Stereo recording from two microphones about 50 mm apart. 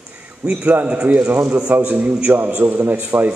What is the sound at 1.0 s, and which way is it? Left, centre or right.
A man's voice, right.